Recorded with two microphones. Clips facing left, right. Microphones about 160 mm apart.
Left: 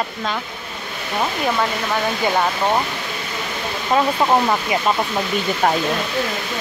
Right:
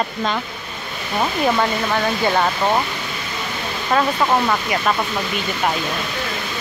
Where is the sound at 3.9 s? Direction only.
20° left (ahead or behind).